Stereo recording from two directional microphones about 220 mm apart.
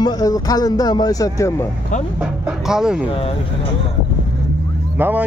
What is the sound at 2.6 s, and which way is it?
Speech, 5° right (ahead or behind).